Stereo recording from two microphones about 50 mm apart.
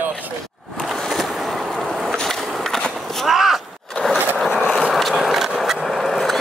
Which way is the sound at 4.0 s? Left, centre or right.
Left.